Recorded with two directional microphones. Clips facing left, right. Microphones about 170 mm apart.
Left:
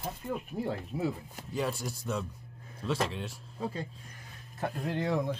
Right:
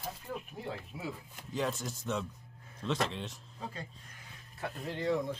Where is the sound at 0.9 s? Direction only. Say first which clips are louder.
Left 13 dB; 40° left (ahead or behind).